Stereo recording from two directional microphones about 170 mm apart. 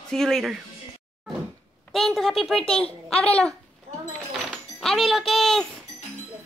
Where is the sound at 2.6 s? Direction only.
35° left (ahead or behind).